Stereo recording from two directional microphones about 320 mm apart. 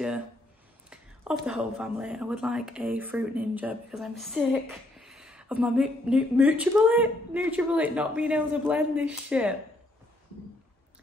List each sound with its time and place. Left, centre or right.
0.8 s speech: centre